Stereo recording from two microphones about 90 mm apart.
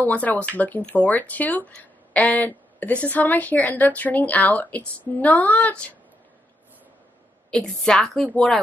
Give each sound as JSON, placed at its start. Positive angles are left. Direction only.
{"t": 0.0, "sound": "a woman's voice", "side_deg": 15}
{"t": 7.5, "sound": "a woman's voice", "side_deg": 5}